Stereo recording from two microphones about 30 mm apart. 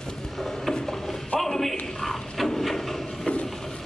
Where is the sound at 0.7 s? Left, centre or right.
Centre.